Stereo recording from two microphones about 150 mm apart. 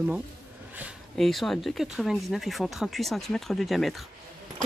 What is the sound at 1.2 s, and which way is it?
Speech, centre (ahead or behind).